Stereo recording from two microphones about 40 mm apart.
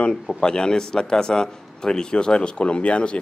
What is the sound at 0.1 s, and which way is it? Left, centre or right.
A man's voice, centre.